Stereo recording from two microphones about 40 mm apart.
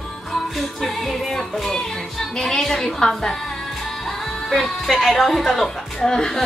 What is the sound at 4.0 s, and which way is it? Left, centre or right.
Music, centre.